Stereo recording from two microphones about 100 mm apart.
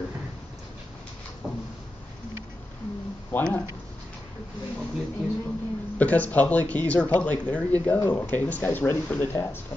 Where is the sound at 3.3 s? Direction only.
15° left (ahead or behind).